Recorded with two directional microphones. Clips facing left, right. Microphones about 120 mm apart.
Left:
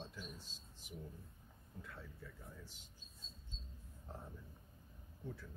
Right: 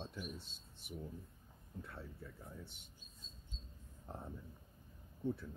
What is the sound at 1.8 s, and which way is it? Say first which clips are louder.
Speech: right 3 dB; 30° right (ahead or behind).